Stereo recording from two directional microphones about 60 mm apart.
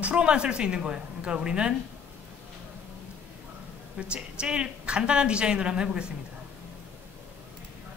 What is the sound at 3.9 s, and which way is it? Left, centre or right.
A woman's voice, centre.